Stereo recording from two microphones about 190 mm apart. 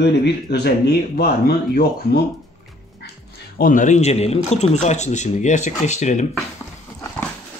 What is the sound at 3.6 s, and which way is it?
Speech, 45° left (ahead or behind).